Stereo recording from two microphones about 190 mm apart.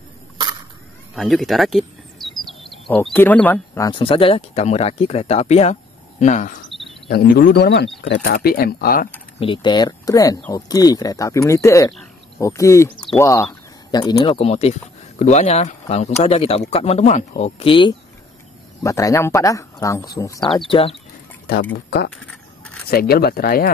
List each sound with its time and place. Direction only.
1.1 s speech: centre (ahead or behind)
3.9 s speech: 30° left (ahead or behind)
7.1 s speech: 55° left (ahead or behind)
9.4 s speech: 25° left (ahead or behind)
21.5 s speech: 55° left (ahead or behind)
22.1 s a sound: 5° left (ahead or behind)
22.8 s speech: 55° left (ahead or behind)